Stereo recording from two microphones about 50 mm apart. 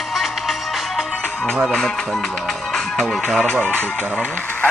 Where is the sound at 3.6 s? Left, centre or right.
Left.